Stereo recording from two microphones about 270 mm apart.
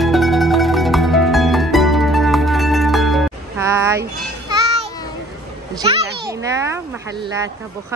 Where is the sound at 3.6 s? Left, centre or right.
Centre.